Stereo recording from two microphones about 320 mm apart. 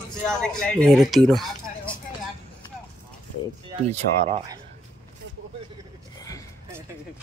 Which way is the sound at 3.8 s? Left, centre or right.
Right.